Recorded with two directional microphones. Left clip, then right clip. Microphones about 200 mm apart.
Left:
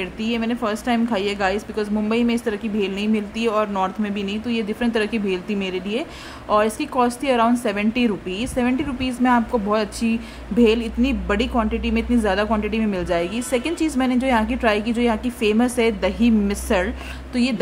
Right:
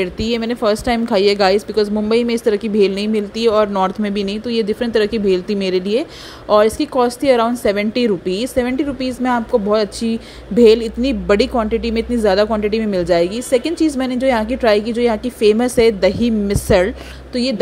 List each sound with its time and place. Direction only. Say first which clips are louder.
0.0 s a woman's voice: right 6 dB; 20° right (ahead or behind)